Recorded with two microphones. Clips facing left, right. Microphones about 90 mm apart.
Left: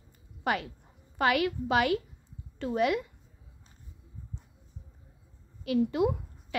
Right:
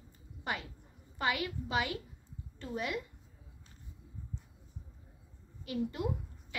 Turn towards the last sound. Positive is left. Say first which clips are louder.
# left 9 dB
turn(degrees=90)